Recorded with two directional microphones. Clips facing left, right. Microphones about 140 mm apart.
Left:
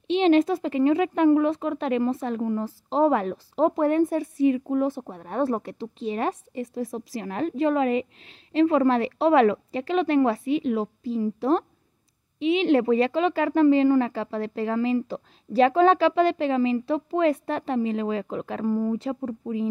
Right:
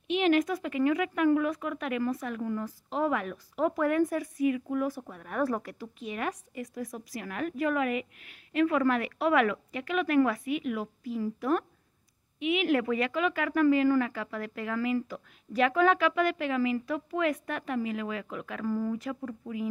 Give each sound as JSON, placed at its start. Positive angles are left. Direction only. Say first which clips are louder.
{"t": 0.1, "sound": "speech", "louder": "left 6 dB", "side_deg": 30}